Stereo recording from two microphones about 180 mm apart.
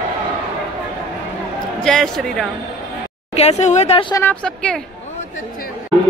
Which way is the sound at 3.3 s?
35° left (ahead or behind).